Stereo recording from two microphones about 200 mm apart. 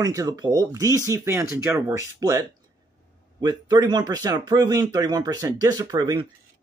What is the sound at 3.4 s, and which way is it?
Speech, 20° right (ahead or behind).